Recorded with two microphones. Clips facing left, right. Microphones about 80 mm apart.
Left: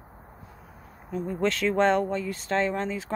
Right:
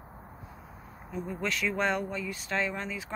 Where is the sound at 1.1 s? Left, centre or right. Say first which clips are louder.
Left 6 dB; left.